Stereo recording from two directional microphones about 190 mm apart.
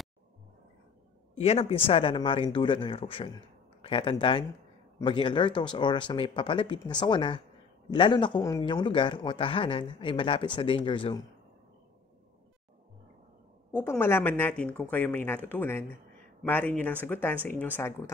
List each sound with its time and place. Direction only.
1.4 s speech: 35° left (ahead or behind)
13.7 s speech: 10° left (ahead or behind)